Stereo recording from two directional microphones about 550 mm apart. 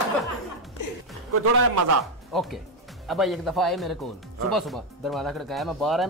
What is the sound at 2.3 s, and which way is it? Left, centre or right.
Speech, centre.